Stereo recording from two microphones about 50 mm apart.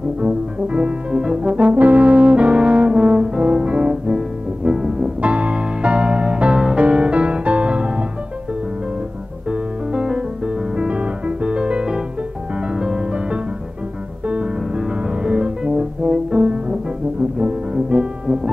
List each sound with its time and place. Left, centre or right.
0.2 s brass instrument: centre
1.7 s brass instrument: right
3.6 s music: right
5.2 s music: right
9.5 s music: centre